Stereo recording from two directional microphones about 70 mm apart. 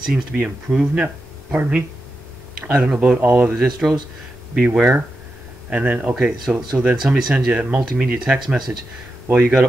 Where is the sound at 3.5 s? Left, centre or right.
Centre.